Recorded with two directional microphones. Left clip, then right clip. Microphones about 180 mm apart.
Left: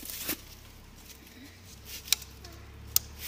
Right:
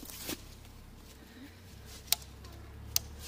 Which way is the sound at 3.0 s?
60° right (ahead or behind).